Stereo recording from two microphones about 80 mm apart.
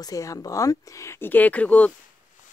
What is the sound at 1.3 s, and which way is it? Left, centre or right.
Speech, centre.